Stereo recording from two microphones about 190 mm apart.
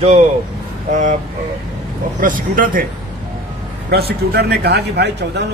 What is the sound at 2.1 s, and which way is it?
Speech, 45° right (ahead or behind).